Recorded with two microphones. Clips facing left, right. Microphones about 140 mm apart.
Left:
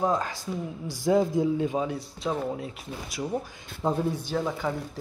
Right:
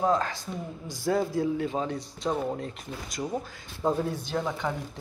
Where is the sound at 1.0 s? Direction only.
15° left (ahead or behind).